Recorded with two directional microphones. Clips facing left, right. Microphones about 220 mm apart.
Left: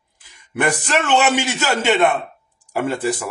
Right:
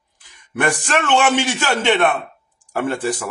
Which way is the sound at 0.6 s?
20° left (ahead or behind).